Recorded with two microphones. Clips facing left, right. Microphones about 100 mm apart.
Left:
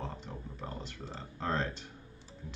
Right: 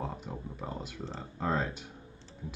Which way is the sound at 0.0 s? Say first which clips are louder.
Right 4 dB; 10° right (ahead or behind).